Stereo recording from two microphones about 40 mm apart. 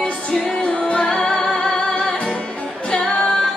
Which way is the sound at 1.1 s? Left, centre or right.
Centre.